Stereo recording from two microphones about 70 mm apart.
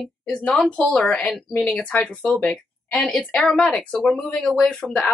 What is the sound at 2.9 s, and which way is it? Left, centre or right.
A woman's voice, centre.